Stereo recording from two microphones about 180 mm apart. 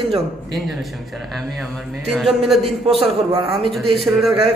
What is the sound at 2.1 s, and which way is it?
Speech, centre (ahead or behind).